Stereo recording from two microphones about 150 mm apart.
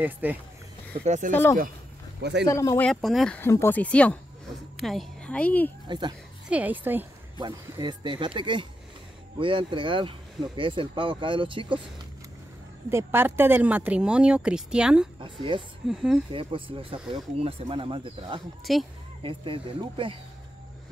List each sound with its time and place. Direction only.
0.0 s speech: 10° right (ahead or behind)
1.0 s speech: 55° right (ahead or behind)
1.3 s speech: 15° left (ahead or behind)
2.8 s speech: centre (ahead or behind)
3.3 s a woman's voice: 15° left (ahead or behind)
5.9 s speech: 30° right (ahead or behind)
6.5 s speech: 10° right (ahead or behind)
7.3 s speech: 30° right (ahead or behind)
12.9 s speech: 15° right (ahead or behind)
16.3 s speech: 35° right (ahead or behind)
18.6 s speech: centre (ahead or behind)
19.2 s speech: 35° right (ahead or behind)